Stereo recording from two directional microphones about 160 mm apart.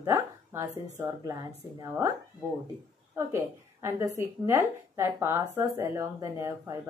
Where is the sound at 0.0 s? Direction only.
15° right (ahead or behind).